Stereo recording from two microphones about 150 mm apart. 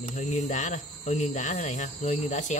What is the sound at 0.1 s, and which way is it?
Speech, 55° left (ahead or behind).